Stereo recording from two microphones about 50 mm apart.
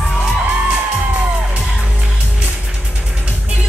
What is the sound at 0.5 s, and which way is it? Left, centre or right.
Music, right.